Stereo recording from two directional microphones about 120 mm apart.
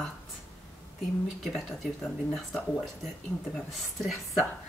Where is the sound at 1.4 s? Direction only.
Centre (ahead or behind).